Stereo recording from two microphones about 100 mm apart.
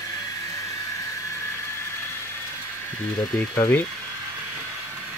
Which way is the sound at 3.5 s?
25° left (ahead or behind).